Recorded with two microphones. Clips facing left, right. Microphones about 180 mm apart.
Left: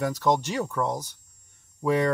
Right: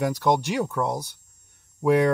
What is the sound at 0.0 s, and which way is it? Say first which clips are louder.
Speech: right 2 dB; 10° right (ahead or behind).